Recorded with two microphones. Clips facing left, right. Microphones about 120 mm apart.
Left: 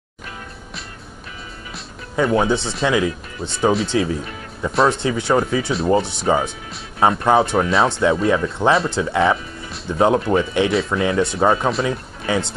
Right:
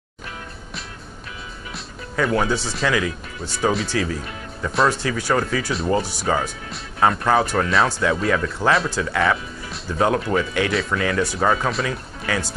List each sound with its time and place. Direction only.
2.1 s speech: 20° left (ahead or behind)